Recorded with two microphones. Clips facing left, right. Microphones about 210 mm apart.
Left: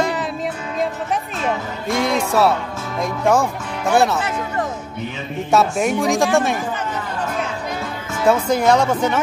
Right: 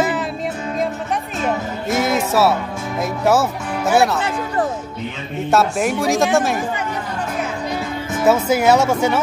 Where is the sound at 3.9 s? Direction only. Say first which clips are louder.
Even; 5° right (ahead or behind).